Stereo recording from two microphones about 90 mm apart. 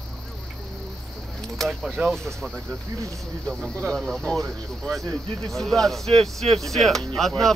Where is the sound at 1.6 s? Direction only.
Centre (ahead or behind).